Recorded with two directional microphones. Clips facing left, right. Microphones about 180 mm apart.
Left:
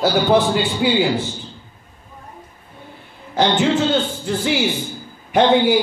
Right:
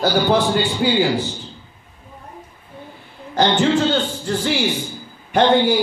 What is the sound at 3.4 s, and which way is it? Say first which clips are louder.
A man's voice: even; 5° left (ahead or behind).